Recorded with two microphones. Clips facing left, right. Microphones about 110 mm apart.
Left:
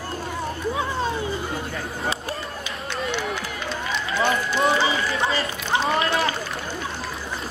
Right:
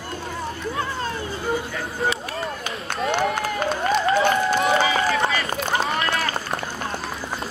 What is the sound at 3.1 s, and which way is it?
Run, 50° right (ahead or behind).